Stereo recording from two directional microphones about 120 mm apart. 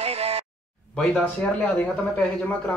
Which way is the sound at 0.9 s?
Centre (ahead or behind).